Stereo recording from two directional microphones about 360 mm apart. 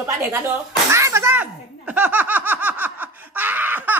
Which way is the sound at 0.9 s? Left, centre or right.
Centre.